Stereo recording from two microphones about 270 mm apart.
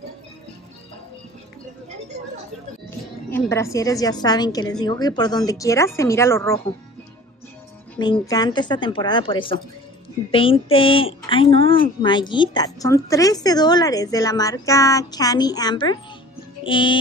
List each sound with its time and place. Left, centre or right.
3.3 s speech: centre
8.0 s speech: centre
16.6 s music: centre